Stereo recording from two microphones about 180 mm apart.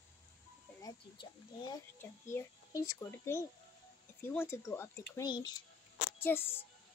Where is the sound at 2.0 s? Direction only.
15° left (ahead or behind).